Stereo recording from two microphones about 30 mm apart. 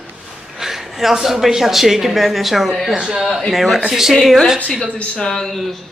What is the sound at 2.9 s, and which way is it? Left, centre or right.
Speech, right.